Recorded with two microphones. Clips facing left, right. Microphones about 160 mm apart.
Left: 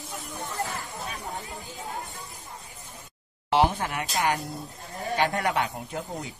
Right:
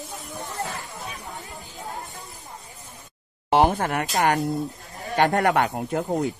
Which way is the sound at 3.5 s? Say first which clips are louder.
Right 4 dB; 50° right (ahead or behind).